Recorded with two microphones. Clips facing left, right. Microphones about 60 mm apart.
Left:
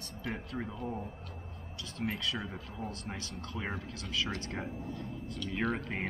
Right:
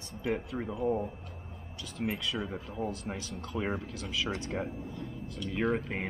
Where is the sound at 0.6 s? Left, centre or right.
Centre.